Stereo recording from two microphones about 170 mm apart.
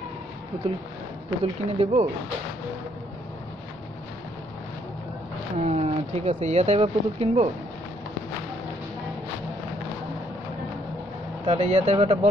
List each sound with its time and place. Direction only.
1.4 s speech: 35° right (ahead or behind)
5.6 s speech: 40° right (ahead or behind)
11.4 s speech: 35° right (ahead or behind)